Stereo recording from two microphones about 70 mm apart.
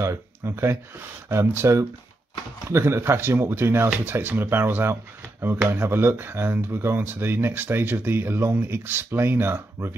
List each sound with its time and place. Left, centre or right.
0.0 s speech: right